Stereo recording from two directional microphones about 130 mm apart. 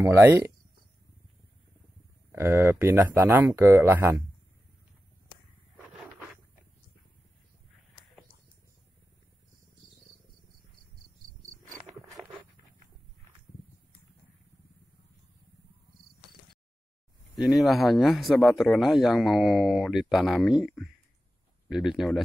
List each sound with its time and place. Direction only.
0.0 s speech: 20° right (ahead or behind)
2.3 s speech: 15° right (ahead or behind)
12.2 s a sound: centre (ahead or behind)
17.4 s speech: centre (ahead or behind)